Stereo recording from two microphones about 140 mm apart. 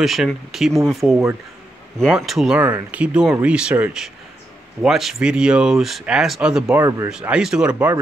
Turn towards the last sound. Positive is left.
turn(degrees=-10)  # may be behind; listen again after turning